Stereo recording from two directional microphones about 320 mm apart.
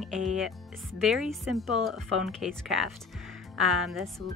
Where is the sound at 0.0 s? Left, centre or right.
Centre.